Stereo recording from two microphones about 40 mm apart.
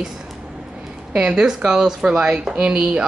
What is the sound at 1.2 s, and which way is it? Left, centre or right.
Speech, centre.